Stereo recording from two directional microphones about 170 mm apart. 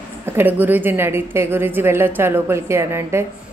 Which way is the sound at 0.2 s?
10° right (ahead or behind).